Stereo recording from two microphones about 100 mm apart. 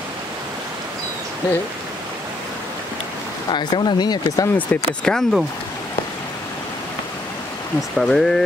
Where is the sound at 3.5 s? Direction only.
50° left (ahead or behind).